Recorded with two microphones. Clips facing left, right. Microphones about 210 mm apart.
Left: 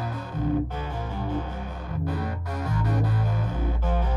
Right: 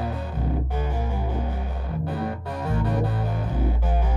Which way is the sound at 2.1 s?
30° right (ahead or behind).